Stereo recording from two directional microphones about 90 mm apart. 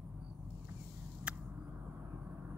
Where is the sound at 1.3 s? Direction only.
10° right (ahead or behind).